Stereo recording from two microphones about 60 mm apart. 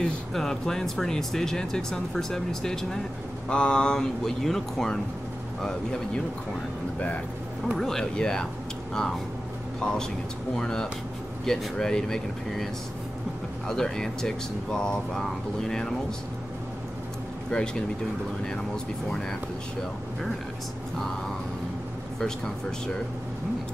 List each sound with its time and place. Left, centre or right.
0.0 s speech: centre
7.7 s speech: centre
13.7 s speech: centre
17.5 s speech: centre